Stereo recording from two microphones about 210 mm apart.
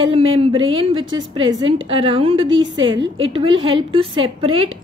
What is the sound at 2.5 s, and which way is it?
Speech, 65° right (ahead or behind).